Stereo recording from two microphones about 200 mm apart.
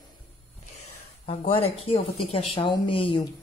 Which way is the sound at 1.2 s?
30° left (ahead or behind).